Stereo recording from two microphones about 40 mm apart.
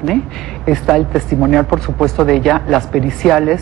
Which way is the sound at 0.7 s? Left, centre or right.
Centre.